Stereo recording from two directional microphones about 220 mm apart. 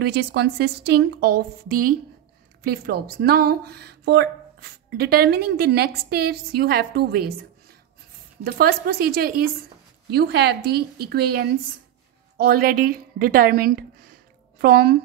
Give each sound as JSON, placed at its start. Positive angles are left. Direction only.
{"t": 0.0, "sound": "a woman's voice", "side_deg": -45}
{"t": 8.5, "sound": "a woman's voice", "side_deg": -40}
{"t": 12.4, "sound": "a woman's voice", "side_deg": -40}